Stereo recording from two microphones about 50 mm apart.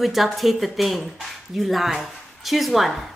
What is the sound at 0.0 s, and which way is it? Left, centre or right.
Speech, centre.